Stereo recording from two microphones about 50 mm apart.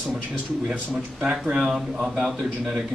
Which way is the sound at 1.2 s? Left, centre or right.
Centre.